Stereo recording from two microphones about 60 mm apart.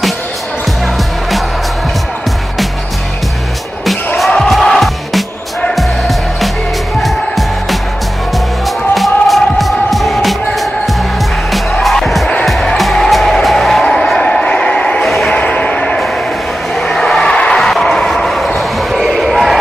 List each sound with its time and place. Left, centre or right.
4.2 s music: centre
8.6 s music: centre
16.7 s vehicle: centre
17.4 s basketball bounce: centre